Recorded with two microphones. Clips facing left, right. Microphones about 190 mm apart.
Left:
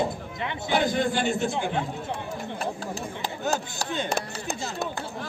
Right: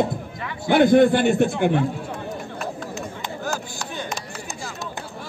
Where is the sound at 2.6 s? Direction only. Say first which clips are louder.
Right 1 dB; 35° left (ahead or behind).